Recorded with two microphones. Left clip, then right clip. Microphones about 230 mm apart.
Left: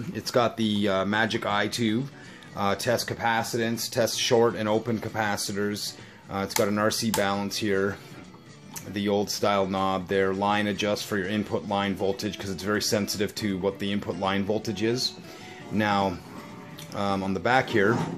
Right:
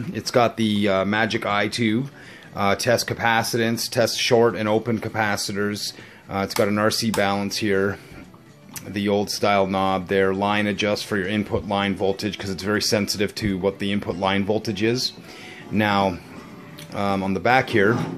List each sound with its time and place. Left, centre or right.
0.1 s speech: centre